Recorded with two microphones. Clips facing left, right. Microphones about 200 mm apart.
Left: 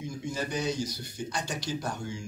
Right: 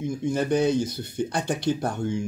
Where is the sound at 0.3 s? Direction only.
60° right (ahead or behind).